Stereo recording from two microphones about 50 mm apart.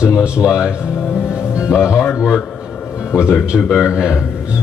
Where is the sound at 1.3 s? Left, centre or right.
Centre.